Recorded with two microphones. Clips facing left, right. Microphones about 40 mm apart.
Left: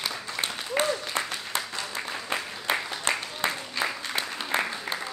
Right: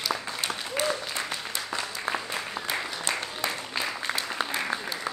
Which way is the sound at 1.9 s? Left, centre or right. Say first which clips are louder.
Left 2 dB; left.